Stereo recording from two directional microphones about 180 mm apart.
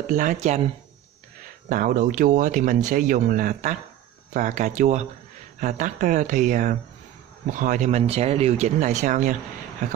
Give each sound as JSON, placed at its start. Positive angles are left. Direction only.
{"t": 0.0, "sound": "speech", "side_deg": -45}
{"t": 1.7, "sound": "speech", "side_deg": -50}